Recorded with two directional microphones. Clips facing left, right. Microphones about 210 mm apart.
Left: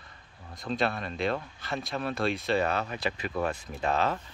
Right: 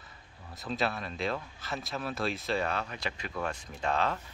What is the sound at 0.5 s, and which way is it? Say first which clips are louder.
Speech: left 3 dB; 5° right (ahead or behind).